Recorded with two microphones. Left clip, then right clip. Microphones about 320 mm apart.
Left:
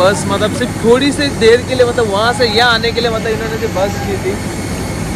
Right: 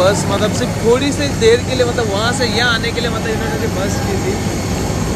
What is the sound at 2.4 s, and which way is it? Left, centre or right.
Speech, centre.